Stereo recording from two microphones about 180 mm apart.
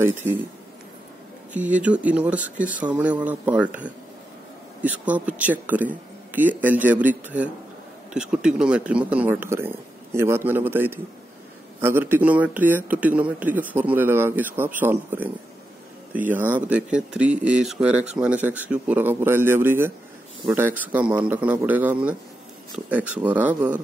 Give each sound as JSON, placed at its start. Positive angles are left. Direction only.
{"t": 1.5, "sound": "a man's voice", "side_deg": -10}
{"t": 4.8, "sound": "a man's voice", "side_deg": -10}